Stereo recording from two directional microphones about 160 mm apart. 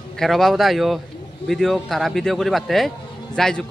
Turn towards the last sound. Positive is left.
turn(degrees=5)  # may be behind; listen again after turning